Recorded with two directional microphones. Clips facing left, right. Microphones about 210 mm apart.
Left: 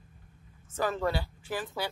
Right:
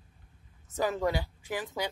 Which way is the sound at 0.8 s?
15° right (ahead or behind).